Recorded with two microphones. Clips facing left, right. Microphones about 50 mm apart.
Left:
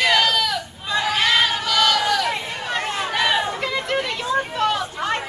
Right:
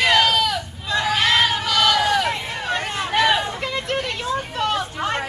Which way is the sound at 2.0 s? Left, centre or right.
Centre.